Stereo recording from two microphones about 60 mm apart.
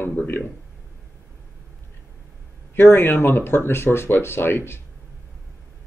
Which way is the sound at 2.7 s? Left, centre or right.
Left.